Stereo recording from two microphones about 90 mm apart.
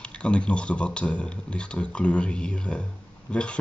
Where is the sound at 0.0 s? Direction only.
10° left (ahead or behind).